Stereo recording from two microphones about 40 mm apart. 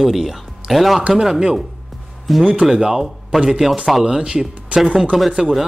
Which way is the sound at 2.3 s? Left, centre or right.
Centre.